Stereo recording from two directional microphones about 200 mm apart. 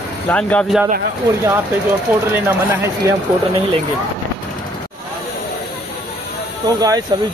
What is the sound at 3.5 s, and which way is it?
Speech, 30° right (ahead or behind).